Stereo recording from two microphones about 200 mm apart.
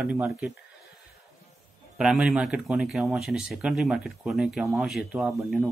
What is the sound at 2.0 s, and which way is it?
Speech, centre (ahead or behind).